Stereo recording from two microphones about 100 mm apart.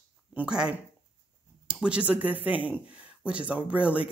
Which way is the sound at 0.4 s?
10° right (ahead or behind).